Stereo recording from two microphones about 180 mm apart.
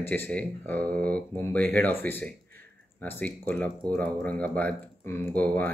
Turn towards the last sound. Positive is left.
turn(degrees=10)  # may be behind; listen again after turning